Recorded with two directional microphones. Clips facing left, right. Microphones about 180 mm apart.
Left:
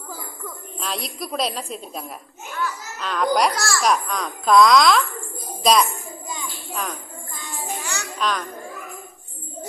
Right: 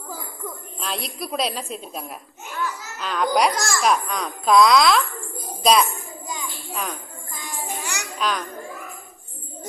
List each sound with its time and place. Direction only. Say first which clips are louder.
0.7 s a woman's voice: left 1 dB; centre (ahead or behind)
3.5 s a child's voice: even; 15° right (ahead or behind)
3.8 s a woman's voice: even; centre (ahead or behind)
6.7 s jingle bell: even; centre (ahead or behind)
7.4 s music: even; 15° right (ahead or behind)
8.2 s children playing: even; centre (ahead or behind)